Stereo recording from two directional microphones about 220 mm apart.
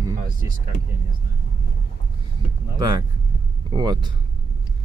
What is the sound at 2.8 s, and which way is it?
Speech, 20° right (ahead or behind).